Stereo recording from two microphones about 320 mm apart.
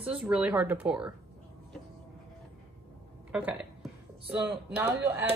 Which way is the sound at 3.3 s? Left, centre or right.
Centre.